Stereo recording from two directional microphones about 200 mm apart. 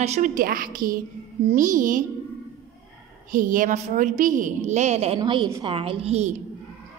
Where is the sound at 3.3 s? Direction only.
40° right (ahead or behind).